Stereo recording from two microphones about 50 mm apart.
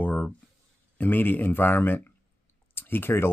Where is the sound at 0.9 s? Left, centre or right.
Left.